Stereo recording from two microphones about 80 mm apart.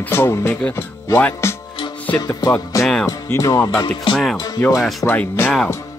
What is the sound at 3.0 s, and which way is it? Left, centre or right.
Music, left.